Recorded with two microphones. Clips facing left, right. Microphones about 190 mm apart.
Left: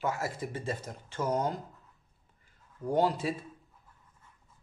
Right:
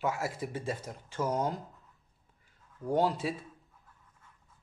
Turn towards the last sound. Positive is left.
turn(degrees=0)  # may be behind; listen again after turning